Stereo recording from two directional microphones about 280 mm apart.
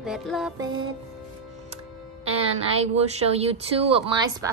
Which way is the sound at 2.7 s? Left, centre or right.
Right.